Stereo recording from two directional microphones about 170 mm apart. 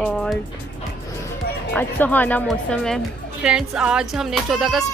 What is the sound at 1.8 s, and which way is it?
Speech, 10° left (ahead or behind).